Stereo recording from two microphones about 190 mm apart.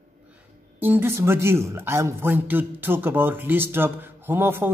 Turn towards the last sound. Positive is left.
turn(degrees=-10)  # may be behind; listen again after turning